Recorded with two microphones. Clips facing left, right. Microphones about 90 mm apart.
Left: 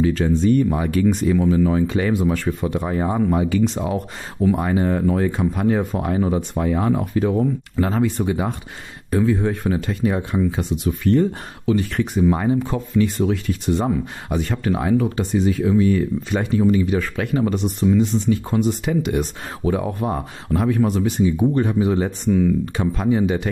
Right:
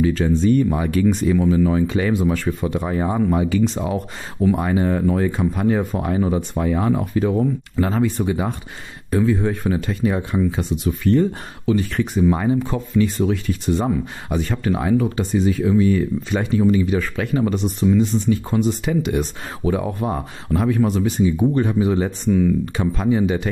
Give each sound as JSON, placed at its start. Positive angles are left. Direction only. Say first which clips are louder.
{"t": 0.0, "sound": "speech", "louder": "even", "side_deg": 55}
{"t": 4.4, "sound": "speech", "louder": "even", "side_deg": 30}
{"t": 6.6, "sound": "speech", "louder": "even", "side_deg": 40}
{"t": 7.0, "sound": "speech", "louder": "even", "side_deg": 60}
{"t": 16.6, "sound": "speech", "louder": "even", "side_deg": 60}
{"t": 17.9, "sound": "speech", "louder": "even", "side_deg": 70}
{"t": 18.9, "sound": "speech", "louder": "even", "side_deg": 50}